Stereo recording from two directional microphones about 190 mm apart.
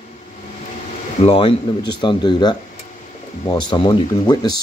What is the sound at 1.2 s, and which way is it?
Speech, 30° left (ahead or behind).